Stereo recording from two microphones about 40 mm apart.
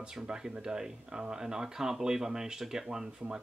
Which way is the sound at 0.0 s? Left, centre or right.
Centre.